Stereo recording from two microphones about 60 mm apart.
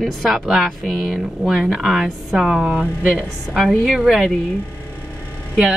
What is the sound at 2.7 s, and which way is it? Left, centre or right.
Speech, right.